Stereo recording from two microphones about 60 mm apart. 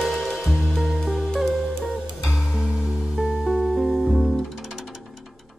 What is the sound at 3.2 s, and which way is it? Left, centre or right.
Music, centre.